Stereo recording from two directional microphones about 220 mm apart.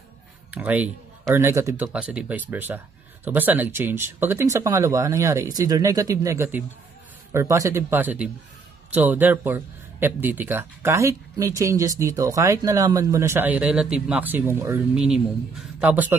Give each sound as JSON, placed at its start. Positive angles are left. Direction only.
{"t": 0.5, "sound": "a man's voice", "side_deg": -5}